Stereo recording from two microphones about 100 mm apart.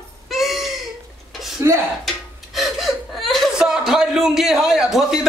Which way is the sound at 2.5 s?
Centre (ahead or behind).